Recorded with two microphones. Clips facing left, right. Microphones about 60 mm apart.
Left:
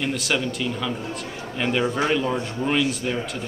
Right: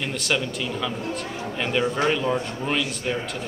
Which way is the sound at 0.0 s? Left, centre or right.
Centre.